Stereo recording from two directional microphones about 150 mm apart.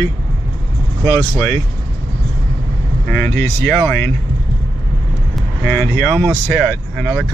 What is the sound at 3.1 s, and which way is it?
Speech, 15° left (ahead or behind).